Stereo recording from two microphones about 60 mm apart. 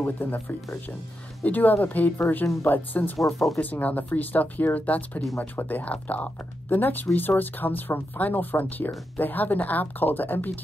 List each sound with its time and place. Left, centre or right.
0.0 s speech: left
1.4 s speech: left
2.4 s speech: left
2.7 s speech: left